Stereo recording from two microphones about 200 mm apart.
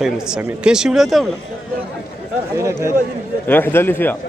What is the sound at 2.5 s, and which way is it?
Speech, 15° right (ahead or behind).